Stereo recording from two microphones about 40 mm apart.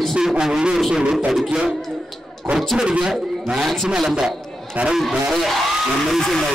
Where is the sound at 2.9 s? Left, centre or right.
Centre.